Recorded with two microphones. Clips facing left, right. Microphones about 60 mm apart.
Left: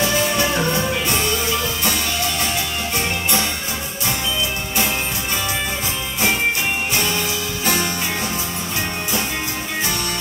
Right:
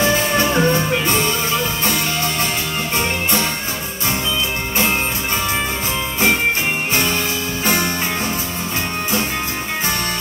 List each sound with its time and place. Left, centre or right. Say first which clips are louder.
0.0 s music: right 2 dB; right
7.6 s music: right 2 dB; right